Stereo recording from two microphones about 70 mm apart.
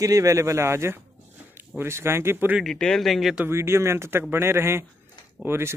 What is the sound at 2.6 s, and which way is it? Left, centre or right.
Speech, centre.